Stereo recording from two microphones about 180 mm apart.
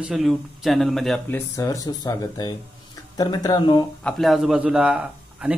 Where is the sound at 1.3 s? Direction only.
15° left (ahead or behind).